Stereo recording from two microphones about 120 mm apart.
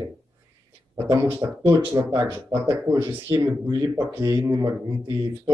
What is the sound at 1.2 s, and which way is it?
Speech, 20° right (ahead or behind).